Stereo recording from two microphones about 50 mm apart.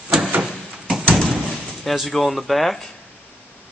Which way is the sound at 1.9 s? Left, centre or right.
Centre.